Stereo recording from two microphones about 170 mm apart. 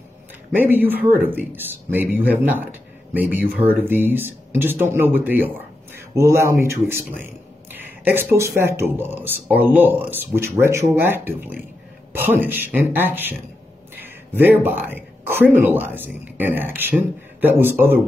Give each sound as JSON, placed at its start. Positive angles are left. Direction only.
{"t": 0.6, "sound": "a man's voice", "side_deg": -10}